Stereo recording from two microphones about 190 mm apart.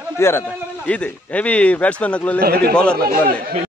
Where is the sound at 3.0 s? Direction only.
50° right (ahead or behind).